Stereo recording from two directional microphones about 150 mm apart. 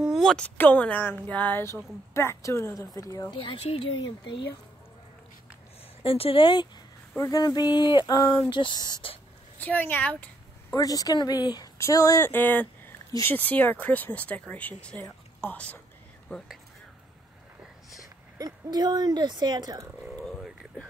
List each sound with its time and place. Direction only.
0.1 s speech: centre (ahead or behind); by 3.3 s 20° left (ahead or behind)
3.3 s speech: 35° left (ahead or behind)
6.0 s speech: 40° left (ahead or behind)
9.6 s speech: 10° left (ahead or behind)
10.7 s speech: 25° left (ahead or behind); by 16.5 s 5° left (ahead or behind)
18.4 s speech: 25° right (ahead or behind)
20.1 s a sound: 5° left (ahead or behind)